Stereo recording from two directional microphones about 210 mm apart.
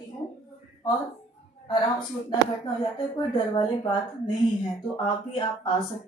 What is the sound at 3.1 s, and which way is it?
Speech, 20° left (ahead or behind).